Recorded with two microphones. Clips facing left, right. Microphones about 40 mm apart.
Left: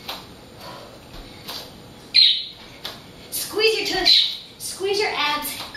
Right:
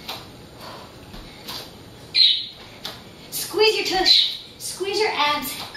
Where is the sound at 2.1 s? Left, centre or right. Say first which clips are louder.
Left 2 dB; left.